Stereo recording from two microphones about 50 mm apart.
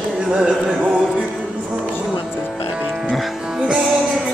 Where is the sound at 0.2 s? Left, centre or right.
Right.